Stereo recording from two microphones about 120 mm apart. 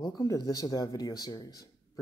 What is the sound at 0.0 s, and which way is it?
Speech, 35° left (ahead or behind).